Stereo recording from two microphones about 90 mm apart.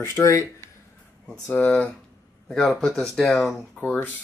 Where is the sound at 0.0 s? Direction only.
35° left (ahead or behind).